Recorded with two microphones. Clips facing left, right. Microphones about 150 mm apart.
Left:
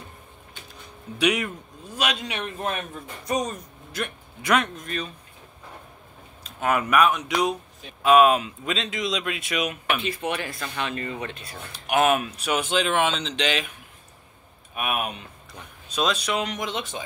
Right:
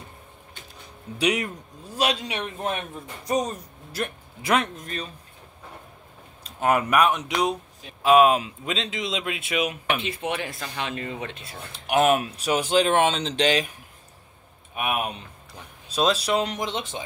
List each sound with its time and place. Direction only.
1.1 s speech: 30° right (ahead or behind)
6.6 s speech: 25° right (ahead or behind)
10.5 s speech: 10° right (ahead or behind)
10.8 s speech: 20° right (ahead or behind); by 13.7 s 40° right (ahead or behind)
14.8 s speech: 25° right (ahead or behind)